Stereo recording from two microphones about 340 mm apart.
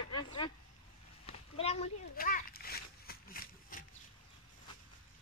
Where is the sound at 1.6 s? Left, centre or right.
Centre.